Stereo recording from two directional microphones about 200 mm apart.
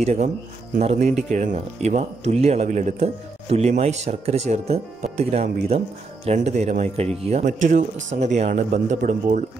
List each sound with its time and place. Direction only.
0.0 s a man's voice: 35° right (ahead or behind)